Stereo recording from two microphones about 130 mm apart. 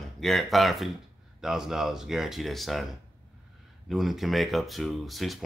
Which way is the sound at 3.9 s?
Centre (ahead or behind).